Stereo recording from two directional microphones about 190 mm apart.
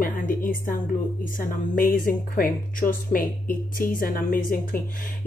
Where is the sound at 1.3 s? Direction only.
50° left (ahead or behind).